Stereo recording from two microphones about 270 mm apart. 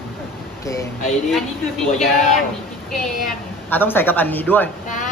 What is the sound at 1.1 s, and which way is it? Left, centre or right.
Speech, centre.